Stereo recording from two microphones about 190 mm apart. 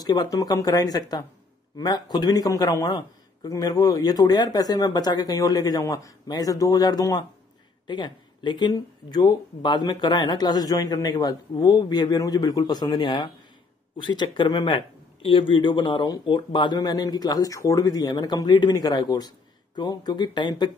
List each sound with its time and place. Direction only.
0.0 s speech: 20° left (ahead or behind)